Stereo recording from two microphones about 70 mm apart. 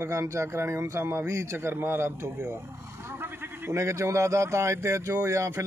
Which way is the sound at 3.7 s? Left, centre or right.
Right.